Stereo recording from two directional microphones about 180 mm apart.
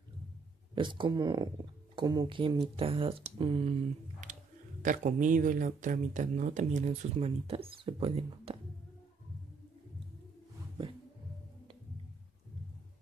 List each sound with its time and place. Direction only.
0.7 s speech: 25° right (ahead or behind)
4.2 s clicking: 45° right (ahead or behind)
4.8 s speech: 45° right (ahead or behind)